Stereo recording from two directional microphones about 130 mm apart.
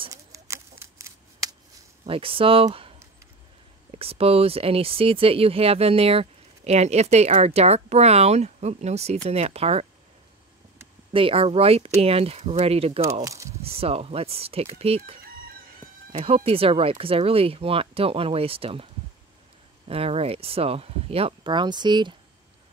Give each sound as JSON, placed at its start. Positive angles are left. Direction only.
{"t": 0.1, "sound": "a sound", "side_deg": -25}
{"t": 2.0, "sound": "speech", "side_deg": -45}
{"t": 3.9, "sound": "speech", "side_deg": -50}
{"t": 11.1, "sound": "speech", "side_deg": -45}
{"t": 13.0, "sound": "speech", "side_deg": -25}
{"t": 13.6, "sound": "speech", "side_deg": -50}
{"t": 16.1, "sound": "speech", "side_deg": -50}
{"t": 19.9, "sound": "speech", "side_deg": -50}